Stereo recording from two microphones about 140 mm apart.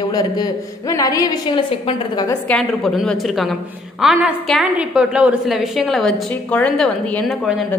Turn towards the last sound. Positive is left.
turn(degrees=5)  # may be behind; listen again after turning